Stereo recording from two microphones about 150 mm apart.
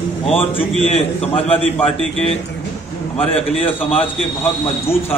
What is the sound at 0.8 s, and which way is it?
A man's voice, 45° left (ahead or behind).